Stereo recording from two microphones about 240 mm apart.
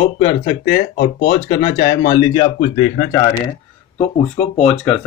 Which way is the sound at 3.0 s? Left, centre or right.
Centre.